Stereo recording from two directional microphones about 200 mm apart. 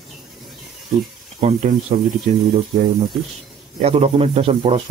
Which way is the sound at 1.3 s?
30° right (ahead or behind).